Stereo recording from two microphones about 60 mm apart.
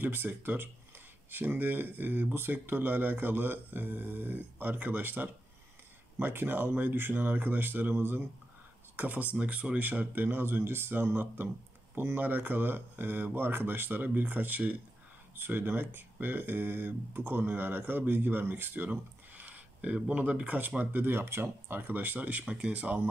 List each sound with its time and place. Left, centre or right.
0.0 s speech: right
8.9 s speech: right